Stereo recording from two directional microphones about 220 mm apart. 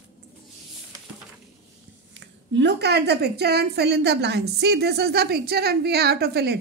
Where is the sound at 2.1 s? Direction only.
55° right (ahead or behind).